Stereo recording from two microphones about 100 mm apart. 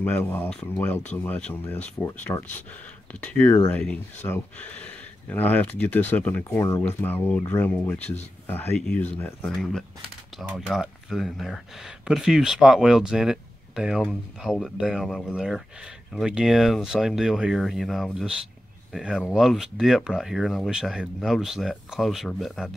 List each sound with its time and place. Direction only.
0.0 s speech: 20° left (ahead or behind)
2.3 s speech: 35° left (ahead or behind)
3.2 s speech: 15° left (ahead or behind)
8.7 s speech: 10° left (ahead or behind)
9.5 s speech: 5° left (ahead or behind)